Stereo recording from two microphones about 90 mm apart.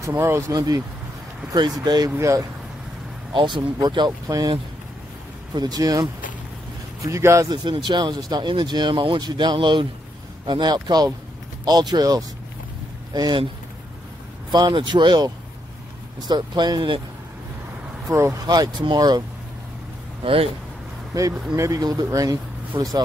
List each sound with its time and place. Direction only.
0.1 s speech: 25° right (ahead or behind)
0.5 s speech: 45° right (ahead or behind)
2.1 s speech: 35° right (ahead or behind)
3.3 s speech: 60° right (ahead or behind)
5.5 s speech: 50° right (ahead or behind)
7.0 s speech: 35° right (ahead or behind)
7.7 s speech: 60° right (ahead or behind)
14.5 s speech: 55° right (ahead or behind)
18.0 s speech: 35° right (ahead or behind)
18.5 s speech: 50° right (ahead or behind)
21.1 s speech: 40° right (ahead or behind)